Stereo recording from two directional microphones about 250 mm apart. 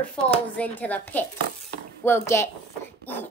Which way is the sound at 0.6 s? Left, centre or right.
Centre.